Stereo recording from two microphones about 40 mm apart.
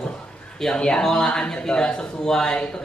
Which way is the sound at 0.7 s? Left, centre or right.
Left.